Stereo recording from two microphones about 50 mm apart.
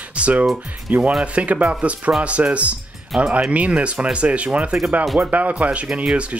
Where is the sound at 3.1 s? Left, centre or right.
Centre.